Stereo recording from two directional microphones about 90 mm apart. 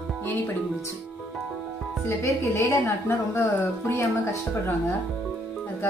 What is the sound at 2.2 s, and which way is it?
Speech, 35° left (ahead or behind).